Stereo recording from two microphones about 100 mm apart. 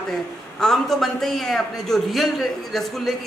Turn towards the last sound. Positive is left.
turn(degrees=0)  # may be behind; listen again after turning